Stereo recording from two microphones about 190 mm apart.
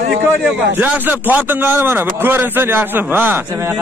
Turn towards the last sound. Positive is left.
turn(degrees=-10)  # may be behind; listen again after turning